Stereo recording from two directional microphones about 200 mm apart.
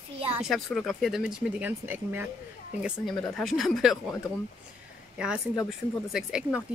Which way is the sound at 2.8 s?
Centre (ahead or behind).